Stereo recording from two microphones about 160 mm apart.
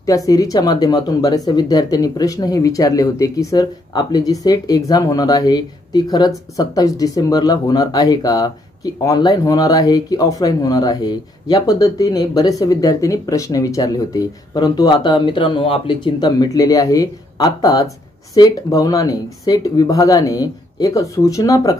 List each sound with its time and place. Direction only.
0.0 s speech: 20° left (ahead or behind)